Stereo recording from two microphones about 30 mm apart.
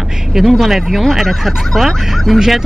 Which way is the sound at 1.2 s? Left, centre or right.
Centre.